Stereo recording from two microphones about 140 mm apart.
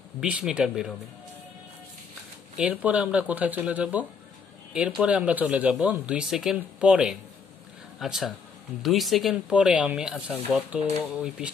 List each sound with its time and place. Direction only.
0.2 s speech: 5° right (ahead or behind)
2.5 s speech: 10° right (ahead or behind)